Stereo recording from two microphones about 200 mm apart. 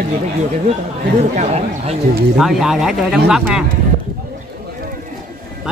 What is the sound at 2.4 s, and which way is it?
Speech, centre (ahead or behind).